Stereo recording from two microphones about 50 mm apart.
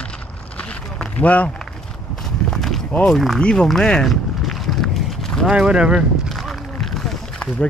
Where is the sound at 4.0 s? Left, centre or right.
Centre.